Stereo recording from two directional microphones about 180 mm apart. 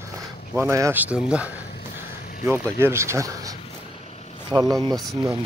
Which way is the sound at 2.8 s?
15° right (ahead or behind).